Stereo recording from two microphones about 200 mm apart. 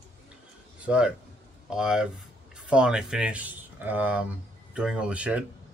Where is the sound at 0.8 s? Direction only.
5° right (ahead or behind).